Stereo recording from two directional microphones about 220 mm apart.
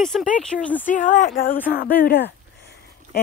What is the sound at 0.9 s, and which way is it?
Speech, 35° left (ahead or behind).